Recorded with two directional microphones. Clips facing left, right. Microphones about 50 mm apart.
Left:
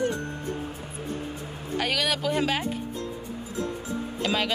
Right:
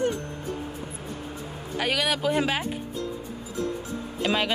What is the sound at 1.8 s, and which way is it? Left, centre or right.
Speech, centre.